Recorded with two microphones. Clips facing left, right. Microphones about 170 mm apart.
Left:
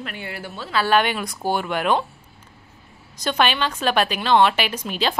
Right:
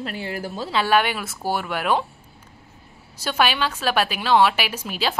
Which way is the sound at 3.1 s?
5° right (ahead or behind).